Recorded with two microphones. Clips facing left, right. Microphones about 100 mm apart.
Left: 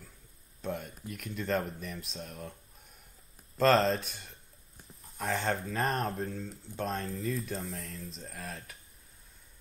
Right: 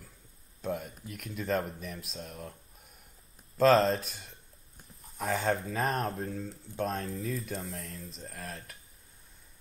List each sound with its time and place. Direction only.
0.6 s speech: centre (ahead or behind)
3.5 s speech: centre (ahead or behind)